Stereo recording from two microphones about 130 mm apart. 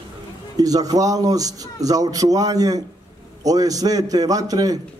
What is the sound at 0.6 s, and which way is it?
A man's voice, 30° right (ahead or behind).